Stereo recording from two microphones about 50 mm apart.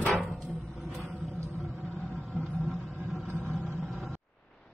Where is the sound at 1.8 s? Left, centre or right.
Centre.